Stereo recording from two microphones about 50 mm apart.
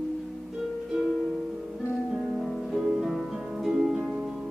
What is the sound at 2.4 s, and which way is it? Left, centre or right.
Music, centre.